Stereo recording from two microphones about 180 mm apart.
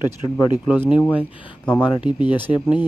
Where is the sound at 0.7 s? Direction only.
5° right (ahead or behind).